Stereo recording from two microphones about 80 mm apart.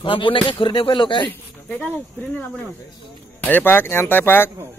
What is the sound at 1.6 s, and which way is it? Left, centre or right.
Speech, centre.